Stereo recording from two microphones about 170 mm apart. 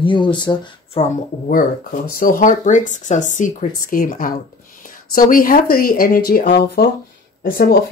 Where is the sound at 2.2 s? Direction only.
55° left (ahead or behind).